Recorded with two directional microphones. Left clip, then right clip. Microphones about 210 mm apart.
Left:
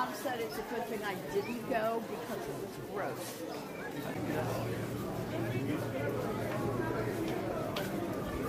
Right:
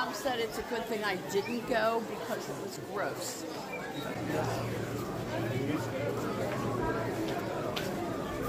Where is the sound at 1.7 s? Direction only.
50° right (ahead or behind).